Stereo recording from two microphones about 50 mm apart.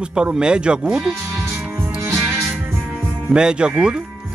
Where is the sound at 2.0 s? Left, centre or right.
Right.